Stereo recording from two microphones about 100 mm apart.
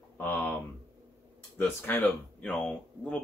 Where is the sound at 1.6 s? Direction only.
20° left (ahead or behind).